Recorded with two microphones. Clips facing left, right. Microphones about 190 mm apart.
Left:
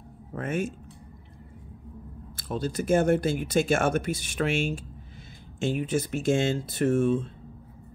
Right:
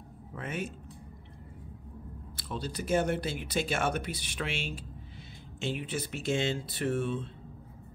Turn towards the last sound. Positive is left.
turn(degrees=45)  # may be behind; listen again after turning